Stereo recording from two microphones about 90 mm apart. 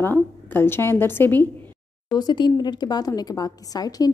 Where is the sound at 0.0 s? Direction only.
25° left (ahead or behind).